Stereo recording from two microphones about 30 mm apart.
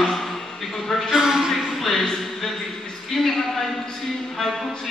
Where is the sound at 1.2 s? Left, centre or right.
Centre.